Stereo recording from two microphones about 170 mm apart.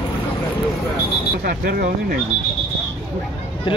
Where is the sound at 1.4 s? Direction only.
60° right (ahead or behind).